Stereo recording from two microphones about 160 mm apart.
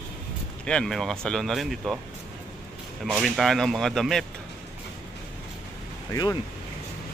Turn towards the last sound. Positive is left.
turn(degrees=25)  # may be behind; listen again after turning